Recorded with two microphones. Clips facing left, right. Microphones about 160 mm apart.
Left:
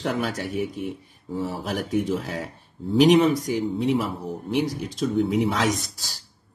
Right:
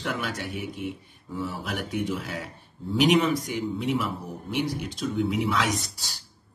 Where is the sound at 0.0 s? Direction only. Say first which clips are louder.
Left 5 dB; 35° left (ahead or behind).